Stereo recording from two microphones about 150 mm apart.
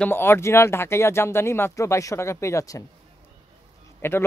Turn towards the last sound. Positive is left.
turn(degrees=15)  # may be behind; listen again after turning